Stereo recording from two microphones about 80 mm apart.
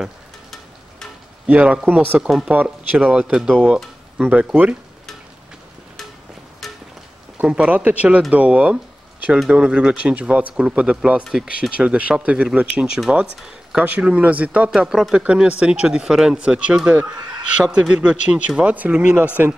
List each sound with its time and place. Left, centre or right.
1.4 s speech: centre
2.2 s speech: centre
2.5 s speech: right
6.6 s a sound: centre
7.4 s speech: centre
11.2 s speech: centre
11.7 s speech: centre